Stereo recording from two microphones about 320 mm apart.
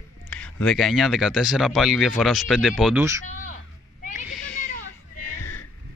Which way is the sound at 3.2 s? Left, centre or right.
Left.